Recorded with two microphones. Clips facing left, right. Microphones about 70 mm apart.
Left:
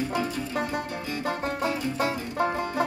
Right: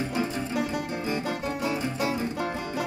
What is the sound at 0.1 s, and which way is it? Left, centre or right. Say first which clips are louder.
Music: even; right.